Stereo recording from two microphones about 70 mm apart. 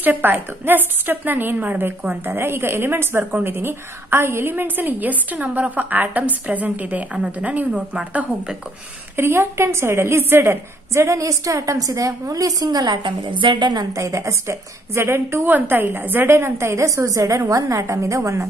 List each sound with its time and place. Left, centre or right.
0.0 s a woman's voice: right
9.1 s a woman's voice: right
13.6 s a woman's voice: right
13.9 s a woman's voice: right